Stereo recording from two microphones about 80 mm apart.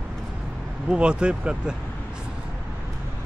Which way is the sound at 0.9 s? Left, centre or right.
Centre.